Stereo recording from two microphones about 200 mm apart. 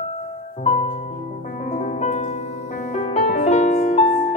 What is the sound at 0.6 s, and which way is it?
Music, 35° left (ahead or behind).